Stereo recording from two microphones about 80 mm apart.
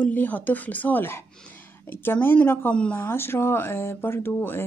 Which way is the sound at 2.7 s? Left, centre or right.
Centre.